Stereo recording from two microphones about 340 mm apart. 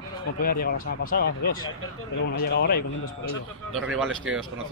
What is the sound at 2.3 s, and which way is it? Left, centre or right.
Speech, left.